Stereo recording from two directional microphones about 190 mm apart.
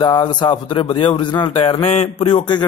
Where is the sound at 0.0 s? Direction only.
25° left (ahead or behind).